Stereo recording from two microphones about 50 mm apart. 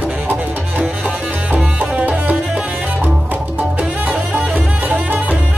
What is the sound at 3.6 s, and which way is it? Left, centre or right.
Music, right.